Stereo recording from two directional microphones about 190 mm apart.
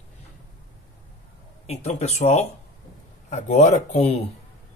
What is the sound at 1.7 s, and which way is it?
Speech, 35° left (ahead or behind).